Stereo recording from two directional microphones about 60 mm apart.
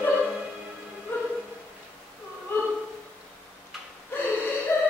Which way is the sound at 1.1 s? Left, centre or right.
Left.